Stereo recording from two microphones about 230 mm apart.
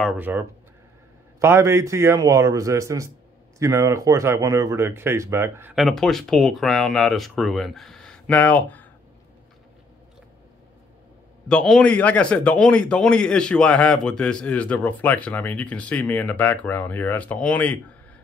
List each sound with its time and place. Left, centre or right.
0.0 s a man's voice: centre
11.4 s speech: centre